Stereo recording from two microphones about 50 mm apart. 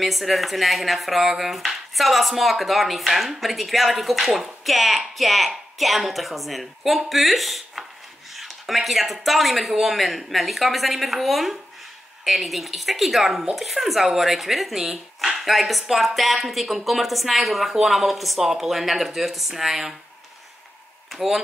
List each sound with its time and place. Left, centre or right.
0.0 s speech: centre
21.1 s a man's voice: centre